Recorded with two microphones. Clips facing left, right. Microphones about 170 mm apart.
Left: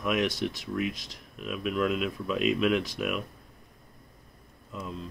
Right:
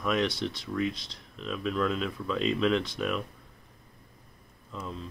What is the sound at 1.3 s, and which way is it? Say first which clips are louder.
Speech: left 1 dB; 10° left (ahead or behind).